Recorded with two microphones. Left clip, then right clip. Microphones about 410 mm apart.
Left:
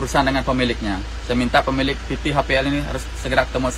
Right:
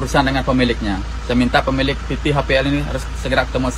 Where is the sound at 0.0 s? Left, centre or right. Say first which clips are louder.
Right 2 dB; centre.